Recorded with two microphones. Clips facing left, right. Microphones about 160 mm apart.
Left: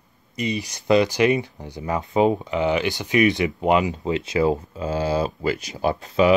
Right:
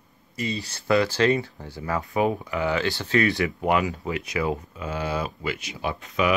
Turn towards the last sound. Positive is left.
turn(degrees=35)  # may be behind; listen again after turning